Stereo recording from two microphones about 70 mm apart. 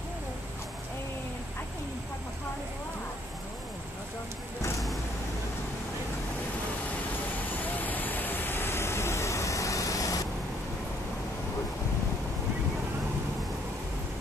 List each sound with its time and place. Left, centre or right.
4.6 s vehicle: left
7.6 s vehicle: left